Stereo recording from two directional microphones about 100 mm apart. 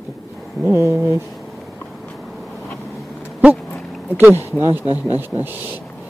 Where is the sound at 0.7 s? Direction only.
25° right (ahead or behind).